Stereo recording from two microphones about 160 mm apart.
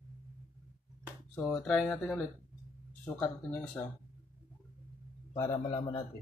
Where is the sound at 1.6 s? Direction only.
5° left (ahead or behind).